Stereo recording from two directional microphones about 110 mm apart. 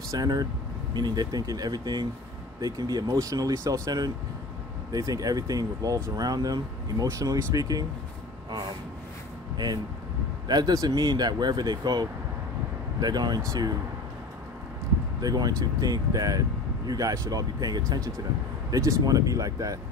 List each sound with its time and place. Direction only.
0.1 s speech: 35° right (ahead or behind)
8.5 s vehicle: 40° right (ahead or behind)
10.5 s speech: 35° right (ahead or behind)
15.1 s speech: 35° right (ahead or behind)